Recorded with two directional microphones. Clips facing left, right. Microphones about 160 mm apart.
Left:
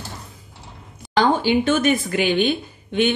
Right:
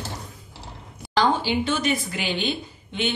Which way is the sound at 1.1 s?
55° left (ahead or behind).